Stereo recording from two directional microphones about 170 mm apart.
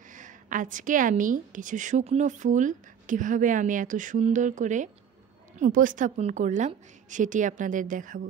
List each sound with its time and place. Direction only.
0.1 s a woman's voice: 50° right (ahead or behind)